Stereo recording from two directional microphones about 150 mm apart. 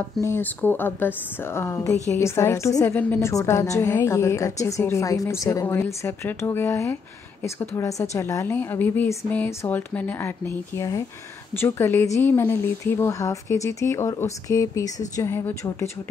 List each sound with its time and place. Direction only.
0.2 s a woman's voice: 15° left (ahead or behind)